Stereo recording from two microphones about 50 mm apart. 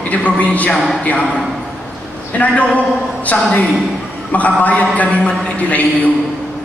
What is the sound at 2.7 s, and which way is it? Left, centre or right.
A man's voice, left.